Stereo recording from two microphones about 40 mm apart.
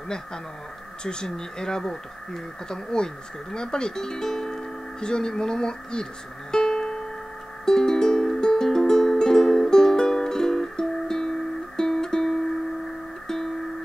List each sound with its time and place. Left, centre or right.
1.0 s speech: centre
6.5 s music: centre